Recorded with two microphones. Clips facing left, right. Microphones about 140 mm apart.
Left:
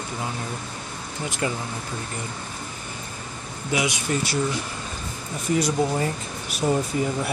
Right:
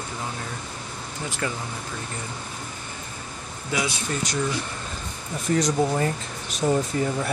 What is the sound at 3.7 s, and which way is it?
Speech, 15° left (ahead or behind).